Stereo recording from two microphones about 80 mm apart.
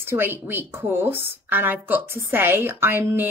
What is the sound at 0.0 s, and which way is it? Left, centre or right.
A woman's voice, right.